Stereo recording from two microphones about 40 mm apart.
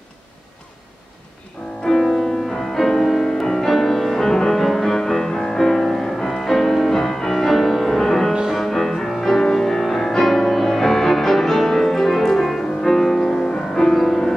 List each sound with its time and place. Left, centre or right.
1.9 s music: centre